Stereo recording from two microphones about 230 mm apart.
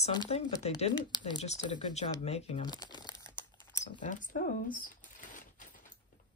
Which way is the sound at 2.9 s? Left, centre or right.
Centre.